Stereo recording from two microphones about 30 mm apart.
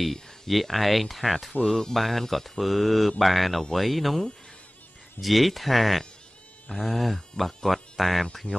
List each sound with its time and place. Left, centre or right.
0.0 s speech: centre
1.7 s speech: centre
5.2 s speech: centre
8.5 s speech: left